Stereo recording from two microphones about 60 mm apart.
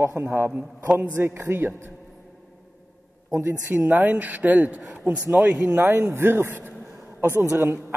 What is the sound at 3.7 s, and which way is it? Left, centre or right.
Speech, right.